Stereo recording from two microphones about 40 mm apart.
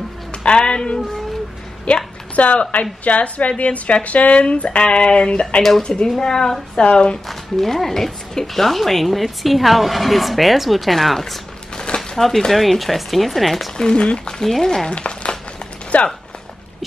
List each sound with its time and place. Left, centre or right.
0.3 s speech: left
2.3 s a woman's voice: left; by 6.8 s centre
6.8 s speech: left
7.2 s speech: centre
11.7 s a sound: centre
12.2 s speech: centre
13.7 s speech: left
14.4 s a woman's voice: centre
14.9 s a sound: left
15.9 s a woman's voice: left